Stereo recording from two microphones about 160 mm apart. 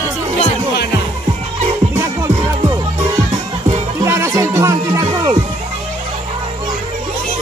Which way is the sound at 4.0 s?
15° right (ahead or behind).